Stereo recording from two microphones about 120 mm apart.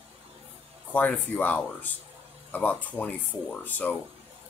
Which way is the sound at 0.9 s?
15° left (ahead or behind).